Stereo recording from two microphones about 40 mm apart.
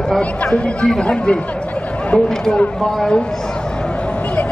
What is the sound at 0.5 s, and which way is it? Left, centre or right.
Speech, centre.